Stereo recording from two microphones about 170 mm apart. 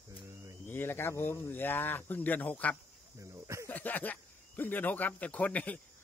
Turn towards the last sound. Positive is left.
turn(degrees=10)  # may be behind; listen again after turning